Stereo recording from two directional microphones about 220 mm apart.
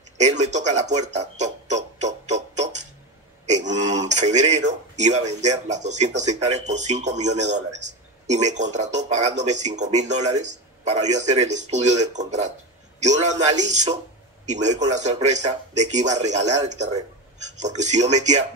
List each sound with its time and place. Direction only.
0.2 s music: 30° right (ahead or behind)
3.4 s speech: 30° right (ahead or behind)
7.8 s a sound: 30° right (ahead or behind)
8.7 s speech: 30° right (ahead or behind)